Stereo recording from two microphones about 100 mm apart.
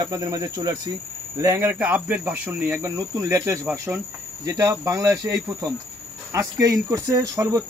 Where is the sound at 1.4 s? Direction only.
25° right (ahead or behind).